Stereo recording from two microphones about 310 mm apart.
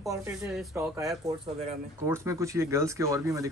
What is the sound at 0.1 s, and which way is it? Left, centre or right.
Speech, centre.